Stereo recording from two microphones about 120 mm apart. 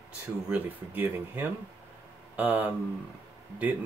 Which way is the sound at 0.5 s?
15° right (ahead or behind).